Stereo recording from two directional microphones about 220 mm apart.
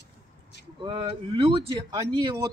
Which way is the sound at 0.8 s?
20° right (ahead or behind).